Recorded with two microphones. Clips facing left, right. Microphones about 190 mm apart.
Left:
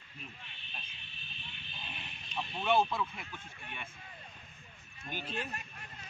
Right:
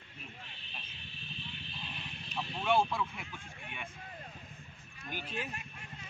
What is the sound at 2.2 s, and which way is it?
Speech, centre (ahead or behind).